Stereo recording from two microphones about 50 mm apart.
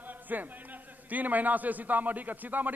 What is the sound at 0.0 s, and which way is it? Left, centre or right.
A man's voice, right.